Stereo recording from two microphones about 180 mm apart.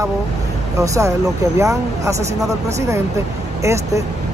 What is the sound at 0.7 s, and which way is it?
Speech, 15° right (ahead or behind).